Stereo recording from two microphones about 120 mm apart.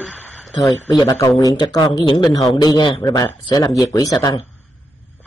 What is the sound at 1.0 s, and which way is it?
A man's voice, 30° left (ahead or behind).